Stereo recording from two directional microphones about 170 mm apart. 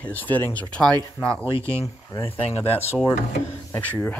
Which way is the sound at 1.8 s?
20° left (ahead or behind).